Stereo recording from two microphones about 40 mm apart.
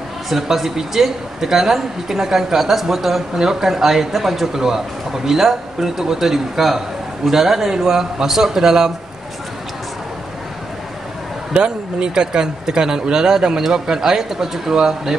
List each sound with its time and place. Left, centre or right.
0.3 s speech: centre
11.5 s speech: centre